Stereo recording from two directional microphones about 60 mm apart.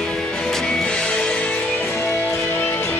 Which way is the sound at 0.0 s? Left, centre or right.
Centre.